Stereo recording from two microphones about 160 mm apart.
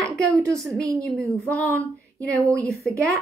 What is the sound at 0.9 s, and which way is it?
Speech, 5° left (ahead or behind).